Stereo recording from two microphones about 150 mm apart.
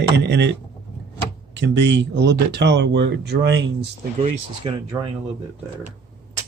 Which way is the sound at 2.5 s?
90° right.